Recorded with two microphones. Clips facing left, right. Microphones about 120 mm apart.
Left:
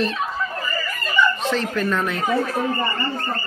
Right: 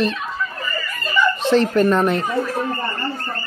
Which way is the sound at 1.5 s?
30° right (ahead or behind).